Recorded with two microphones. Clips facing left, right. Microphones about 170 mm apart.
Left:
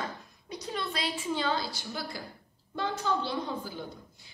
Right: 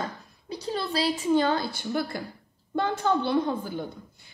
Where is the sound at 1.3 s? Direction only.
55° right (ahead or behind).